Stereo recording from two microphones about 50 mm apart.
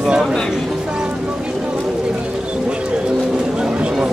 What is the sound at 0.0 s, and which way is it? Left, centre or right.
Speech, centre.